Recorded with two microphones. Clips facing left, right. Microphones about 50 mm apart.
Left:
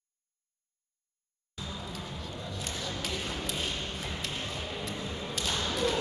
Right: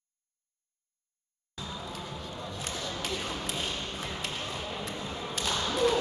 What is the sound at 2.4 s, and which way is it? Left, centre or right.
Music, centre.